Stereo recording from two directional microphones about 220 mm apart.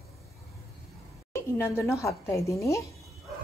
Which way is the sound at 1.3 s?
10° left (ahead or behind).